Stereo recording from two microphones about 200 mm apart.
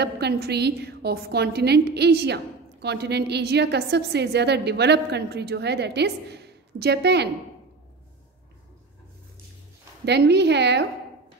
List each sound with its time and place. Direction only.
0.0 s a woman's voice: 55° right (ahead or behind)
10.0 s a woman's voice: 55° right (ahead or behind)